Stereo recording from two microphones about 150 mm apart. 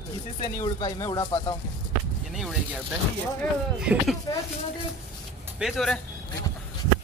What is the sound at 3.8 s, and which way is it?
Speech, 5° right (ahead or behind).